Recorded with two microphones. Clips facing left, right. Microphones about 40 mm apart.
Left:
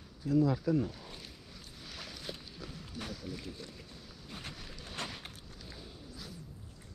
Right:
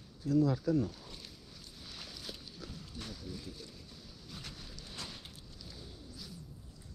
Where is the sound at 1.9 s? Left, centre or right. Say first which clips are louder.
Left 3 dB; left.